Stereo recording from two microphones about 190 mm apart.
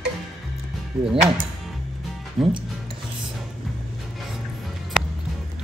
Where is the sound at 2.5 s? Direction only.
25° right (ahead or behind).